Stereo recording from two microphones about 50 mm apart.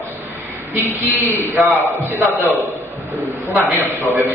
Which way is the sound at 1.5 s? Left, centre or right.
Right.